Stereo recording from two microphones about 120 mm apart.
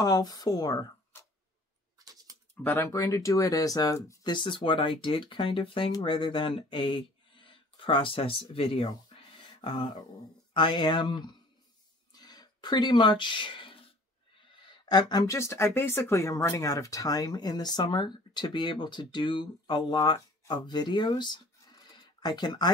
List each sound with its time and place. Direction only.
0.0 s speech: 30° left (ahead or behind)
2.6 s speech: 20° left (ahead or behind)
4.2 s speech: 40° left (ahead or behind)
12.1 s a sound: 35° left (ahead or behind)
14.6 s a sound: 35° left (ahead or behind)
15.3 s speech: 20° left (ahead or behind)